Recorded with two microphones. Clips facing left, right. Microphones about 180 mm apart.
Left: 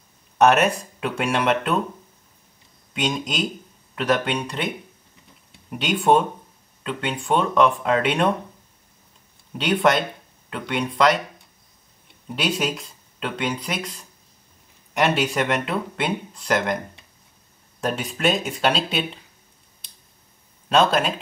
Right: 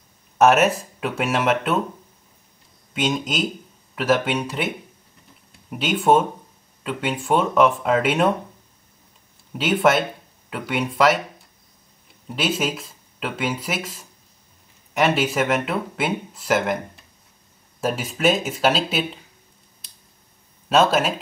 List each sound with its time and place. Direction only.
0.4 s speech: 5° right (ahead or behind)
2.9 s speech: centre (ahead or behind)
9.5 s speech: 5° right (ahead or behind)
12.3 s speech: centre (ahead or behind)
19.8 s a sound: centre (ahead or behind)
20.6 s speech: 5° right (ahead or behind)